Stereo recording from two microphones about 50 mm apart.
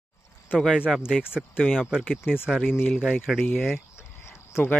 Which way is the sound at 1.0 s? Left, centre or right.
Centre.